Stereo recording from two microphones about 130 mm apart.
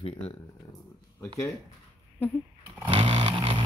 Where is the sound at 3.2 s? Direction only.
40° right (ahead or behind).